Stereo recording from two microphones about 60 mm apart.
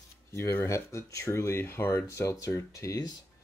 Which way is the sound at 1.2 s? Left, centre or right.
Left.